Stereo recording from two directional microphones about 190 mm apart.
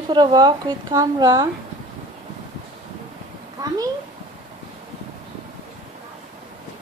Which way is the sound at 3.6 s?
20° right (ahead or behind).